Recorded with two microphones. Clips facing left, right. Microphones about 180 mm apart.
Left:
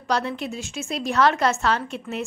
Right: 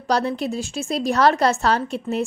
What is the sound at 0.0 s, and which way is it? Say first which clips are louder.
A woman's voice: right 4 dB; 35° right (ahead or behind).